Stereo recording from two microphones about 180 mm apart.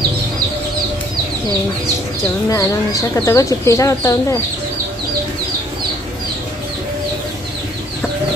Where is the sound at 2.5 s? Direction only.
15° left (ahead or behind).